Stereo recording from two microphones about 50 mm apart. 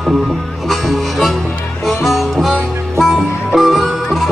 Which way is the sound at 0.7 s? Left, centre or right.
Centre.